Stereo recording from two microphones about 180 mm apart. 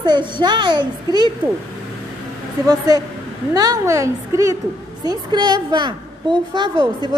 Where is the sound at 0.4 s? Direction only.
25° right (ahead or behind).